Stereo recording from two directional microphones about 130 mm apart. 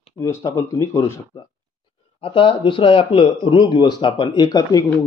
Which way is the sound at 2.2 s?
45° left (ahead or behind).